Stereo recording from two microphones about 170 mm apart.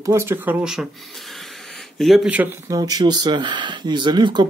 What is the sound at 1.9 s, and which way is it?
Speech, centre (ahead or behind).